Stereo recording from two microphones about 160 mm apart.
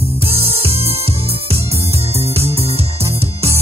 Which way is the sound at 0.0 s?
35° right (ahead or behind).